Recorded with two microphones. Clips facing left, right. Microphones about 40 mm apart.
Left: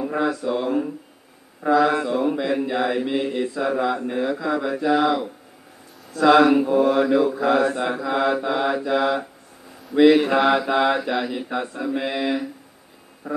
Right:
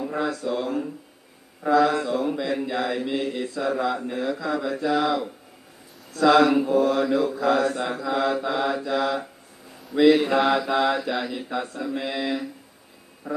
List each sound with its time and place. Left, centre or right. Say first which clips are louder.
0.0 s mantra: left 4 dB; centre